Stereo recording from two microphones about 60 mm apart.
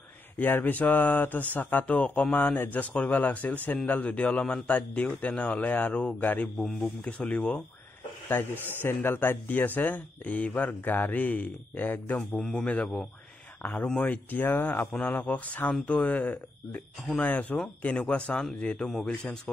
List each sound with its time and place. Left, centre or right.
0.4 s a man's voice: left
7.1 s speech: centre
8.3 s a man's voice: left
12.2 s speech: centre
13.6 s a man's voice: left